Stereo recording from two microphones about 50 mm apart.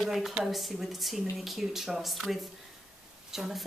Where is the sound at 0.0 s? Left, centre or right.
Centre.